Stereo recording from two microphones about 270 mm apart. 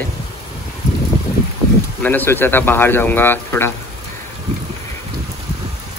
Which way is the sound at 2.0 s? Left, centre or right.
Centre.